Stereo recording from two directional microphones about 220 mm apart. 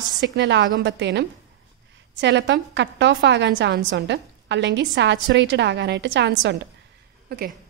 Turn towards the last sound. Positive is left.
turn(degrees=-45)  # may be behind; listen again after turning